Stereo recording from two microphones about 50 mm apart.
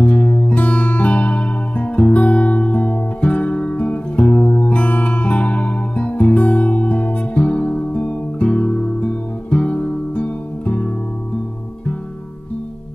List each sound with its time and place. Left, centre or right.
0.0 s music: left